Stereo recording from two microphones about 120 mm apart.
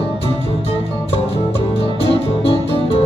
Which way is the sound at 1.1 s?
55° left (ahead or behind).